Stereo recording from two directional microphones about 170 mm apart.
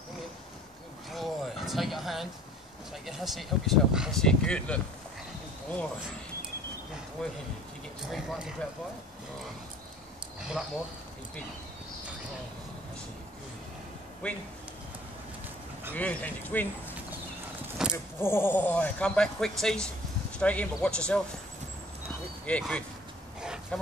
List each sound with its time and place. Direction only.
1.1 s a sound: centre (ahead or behind)
3.1 s speech: centre (ahead or behind)
7.2 s speech: 5° left (ahead or behind)
14.2 s speech: 5° left (ahead or behind)
15.9 s speech: 10° left (ahead or behind)
17.9 s speech: 15° left (ahead or behind)
22.5 s speech: 5° left (ahead or behind)
23.4 s a sound: 5° right (ahead or behind)